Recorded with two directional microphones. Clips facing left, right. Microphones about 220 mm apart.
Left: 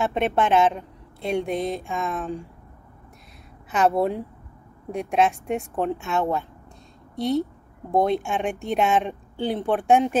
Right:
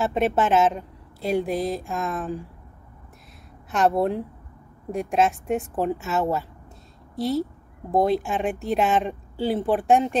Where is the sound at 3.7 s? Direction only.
Centre (ahead or behind).